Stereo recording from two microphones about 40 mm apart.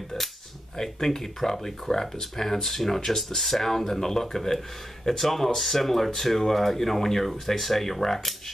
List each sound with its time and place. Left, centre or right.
0.7 s speech: centre